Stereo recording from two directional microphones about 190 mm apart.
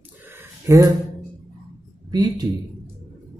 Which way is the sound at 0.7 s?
20° right (ahead or behind).